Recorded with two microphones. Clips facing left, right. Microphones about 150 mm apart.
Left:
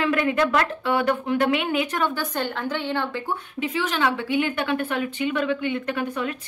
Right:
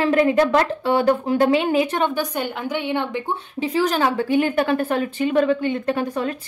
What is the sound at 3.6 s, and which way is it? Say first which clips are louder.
A woman's voice: right 5 dB; 40° right (ahead or behind).